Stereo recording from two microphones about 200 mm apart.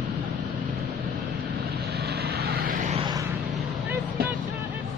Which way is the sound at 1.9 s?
50° right (ahead or behind).